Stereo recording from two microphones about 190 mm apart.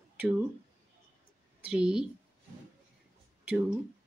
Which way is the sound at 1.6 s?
5° right (ahead or behind).